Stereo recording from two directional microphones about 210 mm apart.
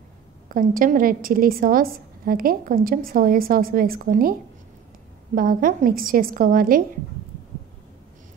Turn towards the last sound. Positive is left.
turn(degrees=-40)  # may be behind; listen again after turning